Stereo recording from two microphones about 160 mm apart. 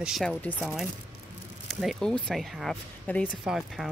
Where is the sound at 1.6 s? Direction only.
Centre (ahead or behind).